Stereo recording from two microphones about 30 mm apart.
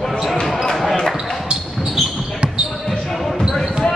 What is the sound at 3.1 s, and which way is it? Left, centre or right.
Basketball bounce, centre.